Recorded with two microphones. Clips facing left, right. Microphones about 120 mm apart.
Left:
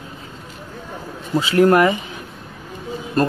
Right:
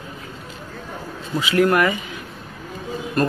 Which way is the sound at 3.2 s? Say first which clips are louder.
Left 2 dB; 30° left (ahead or behind).